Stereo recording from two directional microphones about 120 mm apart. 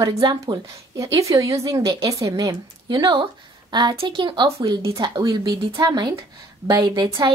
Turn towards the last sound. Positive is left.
turn(degrees=-35)  # may be behind; listen again after turning